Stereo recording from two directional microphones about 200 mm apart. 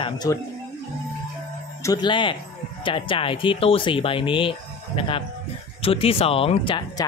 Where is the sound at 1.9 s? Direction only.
25° left (ahead or behind).